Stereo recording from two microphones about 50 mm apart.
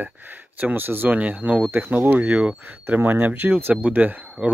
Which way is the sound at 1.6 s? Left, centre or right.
Right.